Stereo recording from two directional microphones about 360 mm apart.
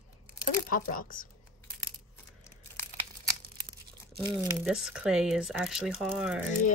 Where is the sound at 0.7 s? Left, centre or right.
Left.